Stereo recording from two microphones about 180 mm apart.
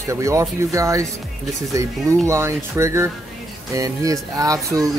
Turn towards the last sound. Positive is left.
turn(degrees=-20)  # may be behind; listen again after turning